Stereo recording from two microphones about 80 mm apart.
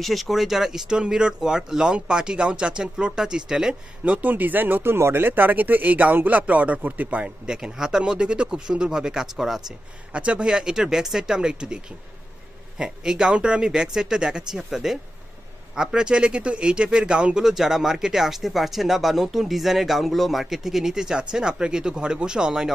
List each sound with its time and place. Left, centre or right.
0.0 s speech: centre
4.0 s speech: centre